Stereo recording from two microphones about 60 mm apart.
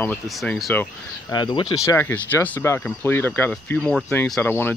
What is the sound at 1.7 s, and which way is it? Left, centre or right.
Speech, left.